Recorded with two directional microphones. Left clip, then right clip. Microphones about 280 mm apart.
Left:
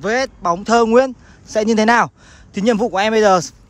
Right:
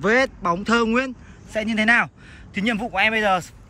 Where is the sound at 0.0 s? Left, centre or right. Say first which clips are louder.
Left 1 dB; centre.